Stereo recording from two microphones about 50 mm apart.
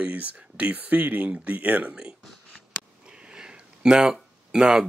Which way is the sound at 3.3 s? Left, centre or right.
Centre.